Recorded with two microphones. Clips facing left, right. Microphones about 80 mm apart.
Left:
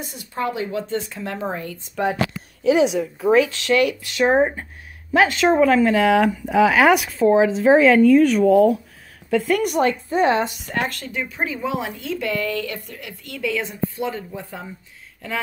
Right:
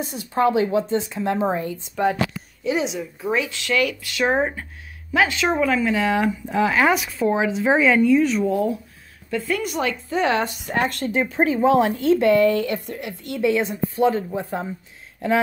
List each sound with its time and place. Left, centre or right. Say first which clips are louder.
0.0 s speech: right 6 dB; right
2.0 s speech: right 1 dB; centre
2.6 s a woman's voice: left 7 dB; left
3.3 s a woman's voice: left 4 dB; left
7.2 s a woman's voice: left 5 dB; left
8.5 s speech: left 7 dB; left
9.3 s speech: left 5 dB; left
9.8 s a woman's voice: left 4 dB; left
10.9 s speech: right 6 dB; right